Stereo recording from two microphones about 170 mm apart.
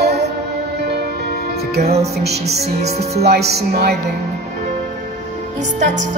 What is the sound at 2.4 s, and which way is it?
Music, 40° right (ahead or behind).